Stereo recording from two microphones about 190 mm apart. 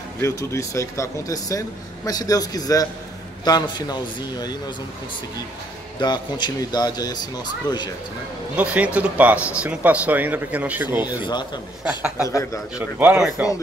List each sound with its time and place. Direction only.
0.2 s speech: 15° left (ahead or behind)
5.9 s speech: 25° left (ahead or behind)
8.5 s speech: 5° right (ahead or behind)
11.2 s speech: 25° left (ahead or behind)
12.7 s speech: 5° right (ahead or behind)